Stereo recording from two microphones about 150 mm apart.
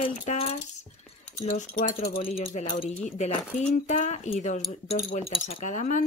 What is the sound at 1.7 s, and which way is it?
Speech, 65° left (ahead or behind).